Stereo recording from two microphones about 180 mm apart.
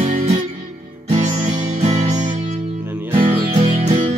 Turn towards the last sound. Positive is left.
turn(degrees=-40)  # may be behind; listen again after turning